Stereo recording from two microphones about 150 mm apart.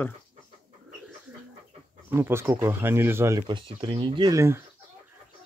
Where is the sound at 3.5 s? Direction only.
30° right (ahead or behind).